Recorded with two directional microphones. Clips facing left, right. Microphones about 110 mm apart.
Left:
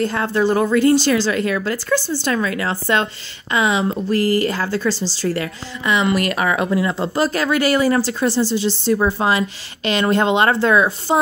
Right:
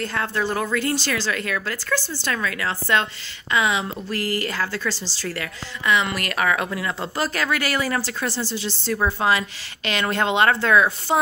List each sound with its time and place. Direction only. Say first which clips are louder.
0.0 s a woman's voice: left 7 dB; 20° left (ahead or behind)